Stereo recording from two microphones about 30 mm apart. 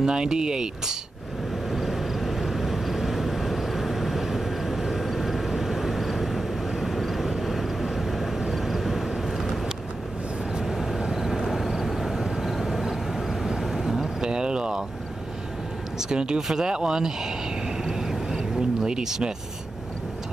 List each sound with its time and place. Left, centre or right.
0.0 s speech: right
1.7 s vehicle: centre
10.6 s vehicle: centre
14.2 s vehicle: right
16.0 s speech: right
16.3 s speech: centre
16.6 s speech: right
17.8 s vehicle: centre
18.6 s a sound: right